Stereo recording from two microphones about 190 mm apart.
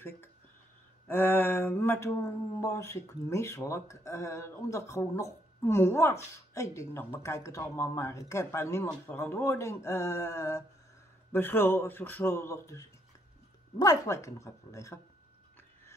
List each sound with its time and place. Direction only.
1.0 s speech: 10° left (ahead or behind)